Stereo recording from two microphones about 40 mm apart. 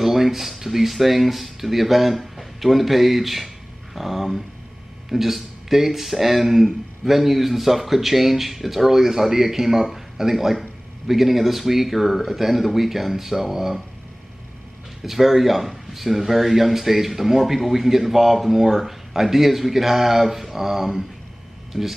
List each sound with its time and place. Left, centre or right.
0.0 s speech: centre
15.0 s speech: centre
21.7 s speech: right